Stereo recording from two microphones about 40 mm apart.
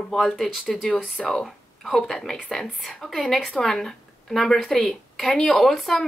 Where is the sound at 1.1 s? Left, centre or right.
Centre.